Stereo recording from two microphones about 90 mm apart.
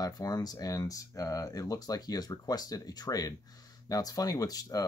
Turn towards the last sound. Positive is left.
turn(degrees=45)  # may be behind; listen again after turning